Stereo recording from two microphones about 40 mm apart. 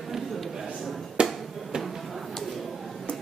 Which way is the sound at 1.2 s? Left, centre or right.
Right.